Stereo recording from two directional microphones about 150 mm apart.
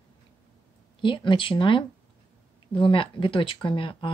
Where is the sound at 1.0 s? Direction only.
35° left (ahead or behind).